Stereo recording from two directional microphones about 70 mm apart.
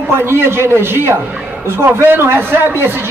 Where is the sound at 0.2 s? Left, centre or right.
Right.